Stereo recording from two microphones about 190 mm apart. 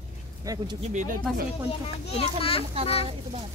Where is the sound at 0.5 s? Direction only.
15° right (ahead or behind).